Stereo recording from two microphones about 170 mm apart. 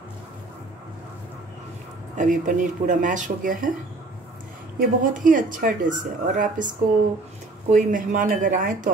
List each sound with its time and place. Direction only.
2.1 s speech: 50° right (ahead or behind)
4.7 s speech: 50° right (ahead or behind)
7.7 s speech: 50° right (ahead or behind)